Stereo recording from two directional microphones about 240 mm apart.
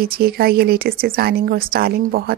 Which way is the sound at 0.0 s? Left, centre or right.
Right.